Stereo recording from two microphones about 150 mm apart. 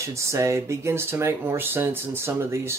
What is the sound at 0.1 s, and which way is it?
Speech, 20° right (ahead or behind).